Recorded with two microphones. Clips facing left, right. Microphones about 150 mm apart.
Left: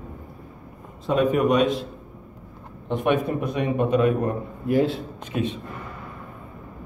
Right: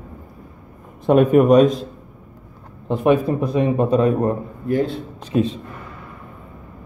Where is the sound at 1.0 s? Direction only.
55° right (ahead or behind); by 1.8 s 40° right (ahead or behind).